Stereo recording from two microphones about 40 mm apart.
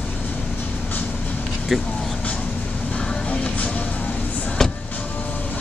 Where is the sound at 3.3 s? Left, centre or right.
Left.